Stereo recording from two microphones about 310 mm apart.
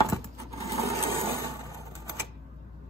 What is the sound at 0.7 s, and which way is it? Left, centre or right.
Filing, centre.